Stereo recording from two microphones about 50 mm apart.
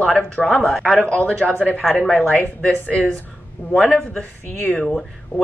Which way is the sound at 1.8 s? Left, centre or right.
Centre.